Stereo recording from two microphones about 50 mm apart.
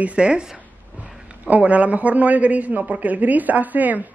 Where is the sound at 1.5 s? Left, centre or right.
Right.